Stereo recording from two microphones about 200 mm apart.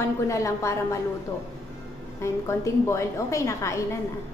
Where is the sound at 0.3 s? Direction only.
15° left (ahead or behind).